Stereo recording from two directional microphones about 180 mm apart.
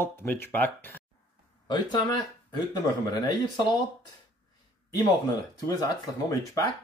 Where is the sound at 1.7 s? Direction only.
25° left (ahead or behind).